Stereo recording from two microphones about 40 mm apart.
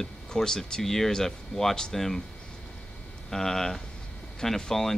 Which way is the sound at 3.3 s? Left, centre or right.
Centre.